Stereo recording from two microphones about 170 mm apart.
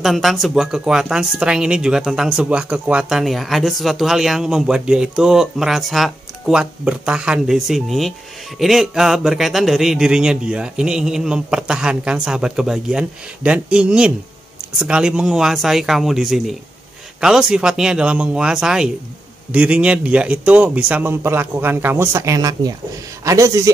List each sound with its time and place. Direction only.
0.0 s a man's voice: centre (ahead or behind); by 23.7 s 20° right (ahead or behind)